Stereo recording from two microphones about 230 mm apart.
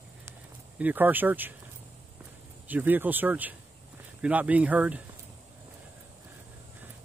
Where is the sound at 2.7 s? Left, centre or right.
Centre.